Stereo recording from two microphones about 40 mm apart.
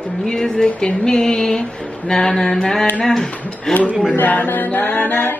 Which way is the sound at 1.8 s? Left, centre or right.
Centre.